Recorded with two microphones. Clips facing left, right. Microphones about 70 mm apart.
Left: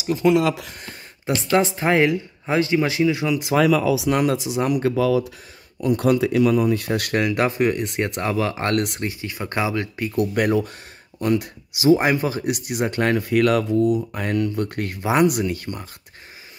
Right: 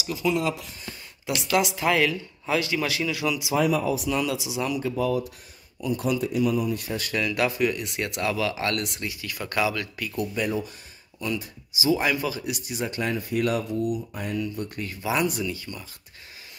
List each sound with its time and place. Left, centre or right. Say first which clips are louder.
0.0 s speech: left 8 dB; left
0.3 s speech: left 7 dB; left
1.2 s speech: left 5 dB; left
3.5 s speech: left 6 dB; left
4.2 s speech: left 6 dB; left
4.8 s speech: left 6 dB; left
7.3 s speech: left 2 dB; left
9.0 s speech: left 5 dB; left
10.1 s speech: left 7 dB; left
11.1 s speech: left 9 dB; left